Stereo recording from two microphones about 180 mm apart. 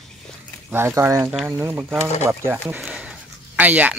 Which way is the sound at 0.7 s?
15° right (ahead or behind).